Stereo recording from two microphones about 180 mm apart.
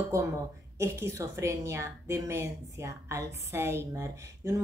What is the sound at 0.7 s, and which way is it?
A woman's voice, 15° right (ahead or behind).